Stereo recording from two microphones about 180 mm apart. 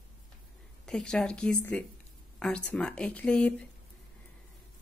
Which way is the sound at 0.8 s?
5° left (ahead or behind).